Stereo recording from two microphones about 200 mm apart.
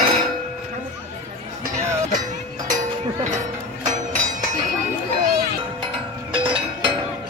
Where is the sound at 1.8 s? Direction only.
15° right (ahead or behind).